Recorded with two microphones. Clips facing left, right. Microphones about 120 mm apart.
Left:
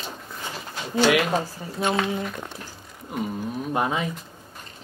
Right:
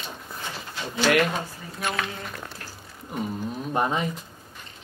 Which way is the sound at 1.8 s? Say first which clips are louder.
Left 6 dB; 25° left (ahead or behind).